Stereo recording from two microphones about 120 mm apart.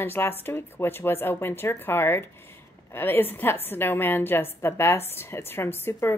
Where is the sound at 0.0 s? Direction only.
20° left (ahead or behind).